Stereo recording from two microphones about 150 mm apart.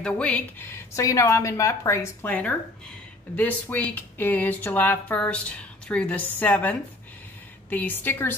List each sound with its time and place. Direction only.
0.0 s speech: 10° left (ahead or behind)